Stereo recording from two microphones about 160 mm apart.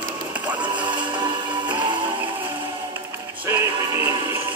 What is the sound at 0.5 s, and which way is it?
Music, 10° right (ahead or behind).